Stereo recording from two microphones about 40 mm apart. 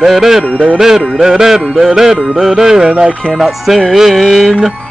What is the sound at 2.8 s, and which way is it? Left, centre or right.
Speech, right.